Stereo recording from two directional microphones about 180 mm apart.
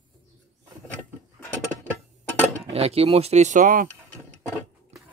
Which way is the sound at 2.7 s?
35° right (ahead or behind).